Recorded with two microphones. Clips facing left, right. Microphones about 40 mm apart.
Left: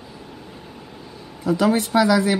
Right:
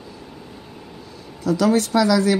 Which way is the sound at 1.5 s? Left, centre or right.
Left.